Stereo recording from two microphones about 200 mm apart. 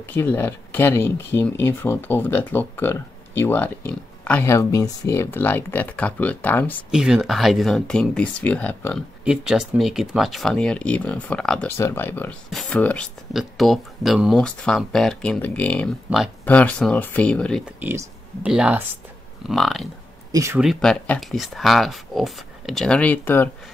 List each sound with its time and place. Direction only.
0.1 s speech: 10° left (ahead or behind)
6.9 s speech: 5° right (ahead or behind)
9.2 s speech: 5° right (ahead or behind)
17.7 s speech: 10° right (ahead or behind)
20.2 s speech: 15° right (ahead or behind)
20.6 s speech: 5° left (ahead or behind)